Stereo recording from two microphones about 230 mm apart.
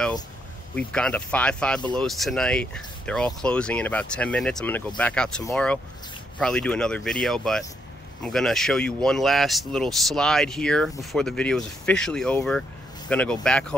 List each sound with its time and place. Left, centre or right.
0.7 s speech: centre